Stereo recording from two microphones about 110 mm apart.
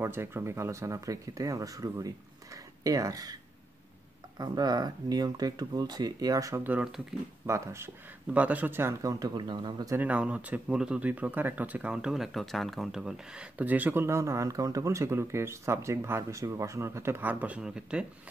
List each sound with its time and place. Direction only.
0.0 s speech: 20° right (ahead or behind)
4.4 s speech: 35° right (ahead or behind)
6.8 s speech: 5° right (ahead or behind)
7.4 s speech: 25° right (ahead or behind)
8.3 s speech: 15° right (ahead or behind)
9.0 s speech: 35° right (ahead or behind)
9.9 s speech: 10° right (ahead or behind)